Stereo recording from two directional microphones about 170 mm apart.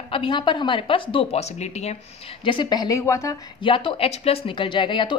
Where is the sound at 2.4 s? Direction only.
30° left (ahead or behind).